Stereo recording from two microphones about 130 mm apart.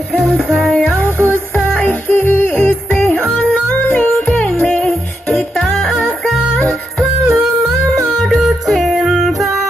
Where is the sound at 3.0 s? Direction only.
5° left (ahead or behind).